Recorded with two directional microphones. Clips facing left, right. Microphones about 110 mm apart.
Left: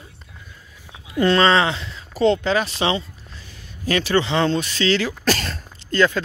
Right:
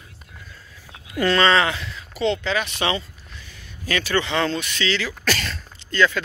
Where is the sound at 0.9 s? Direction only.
25° left (ahead or behind).